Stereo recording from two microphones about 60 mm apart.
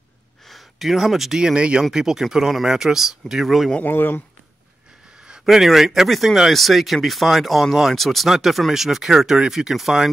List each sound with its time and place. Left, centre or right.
0.5 s speech: centre
3.8 s speech: left
5.4 s speech: centre